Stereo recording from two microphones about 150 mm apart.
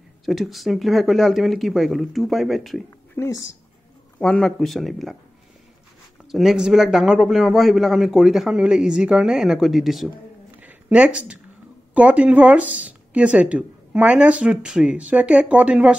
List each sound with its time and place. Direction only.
0.2 s a man's voice: centre (ahead or behind)
3.2 s speech: 20° left (ahead or behind)
4.2 s a man's voice: 5° left (ahead or behind)
6.3 s a man's voice: 5° right (ahead or behind)
10.6 s a sound: 10° right (ahead or behind)
11.9 s speech: 10° right (ahead or behind)